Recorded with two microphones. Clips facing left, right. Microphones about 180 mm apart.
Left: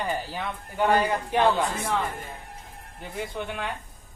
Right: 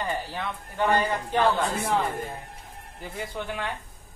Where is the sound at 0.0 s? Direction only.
10° left (ahead or behind).